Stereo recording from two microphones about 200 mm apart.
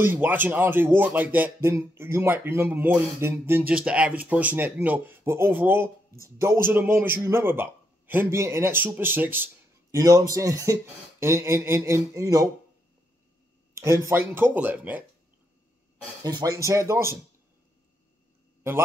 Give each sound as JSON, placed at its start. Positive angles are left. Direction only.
{"t": 0.0, "sound": "a man's voice", "side_deg": -10}
{"t": 13.7, "sound": "a man's voice", "side_deg": -15}
{"t": 16.3, "sound": "a man's voice", "side_deg": -20}